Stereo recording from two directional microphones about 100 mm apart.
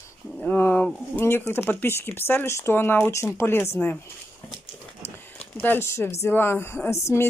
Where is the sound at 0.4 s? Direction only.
20° left (ahead or behind).